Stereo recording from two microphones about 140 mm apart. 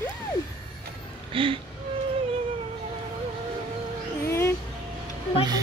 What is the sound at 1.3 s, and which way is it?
Speech, 40° right (ahead or behind).